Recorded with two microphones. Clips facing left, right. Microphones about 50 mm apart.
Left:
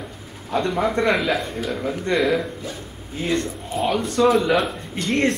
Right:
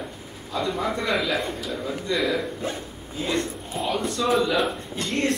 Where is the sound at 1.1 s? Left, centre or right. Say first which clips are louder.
Left 3 dB; left.